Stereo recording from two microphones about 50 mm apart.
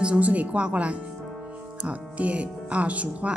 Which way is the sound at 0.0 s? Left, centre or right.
Right.